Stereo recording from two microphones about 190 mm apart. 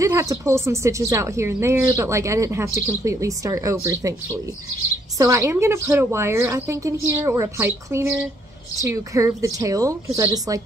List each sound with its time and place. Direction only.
0.0 s speech: 15° right (ahead or behind)